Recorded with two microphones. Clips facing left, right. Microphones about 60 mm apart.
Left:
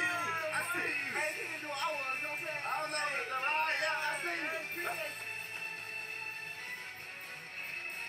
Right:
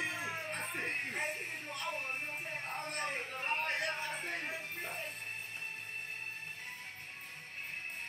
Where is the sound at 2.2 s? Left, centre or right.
Left.